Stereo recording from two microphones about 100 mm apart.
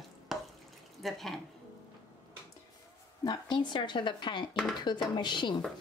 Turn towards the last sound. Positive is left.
turn(degrees=50)  # may be behind; listen again after turning